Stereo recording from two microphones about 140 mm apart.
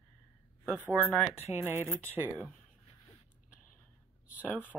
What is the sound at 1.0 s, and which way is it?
Speech, 10° left (ahead or behind).